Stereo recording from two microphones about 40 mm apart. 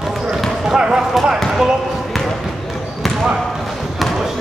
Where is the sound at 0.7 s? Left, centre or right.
Centre.